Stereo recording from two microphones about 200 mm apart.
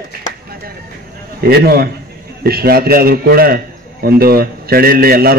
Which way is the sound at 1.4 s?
50° right (ahead or behind).